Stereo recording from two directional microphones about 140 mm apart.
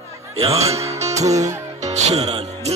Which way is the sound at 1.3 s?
55° right (ahead or behind).